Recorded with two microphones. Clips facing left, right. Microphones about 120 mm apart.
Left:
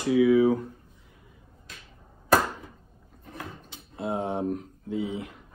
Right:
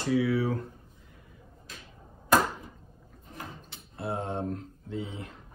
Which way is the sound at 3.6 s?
20° left (ahead or behind).